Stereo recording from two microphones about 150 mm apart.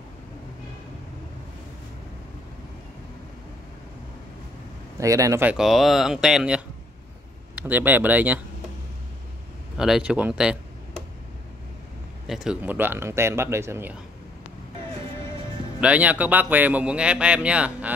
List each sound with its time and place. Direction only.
4.9 s speech: 20° right (ahead or behind)
5.4 s speech: 5° right (ahead or behind)
7.6 s a man's voice: 10° right (ahead or behind)
9.8 s speech: 5° right (ahead or behind)
12.3 s a man's voice: 5° right (ahead or behind)
15.8 s a man's voice: 10° right (ahead or behind)